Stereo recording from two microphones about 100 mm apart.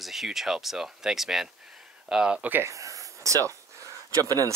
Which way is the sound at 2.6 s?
30° right (ahead or behind).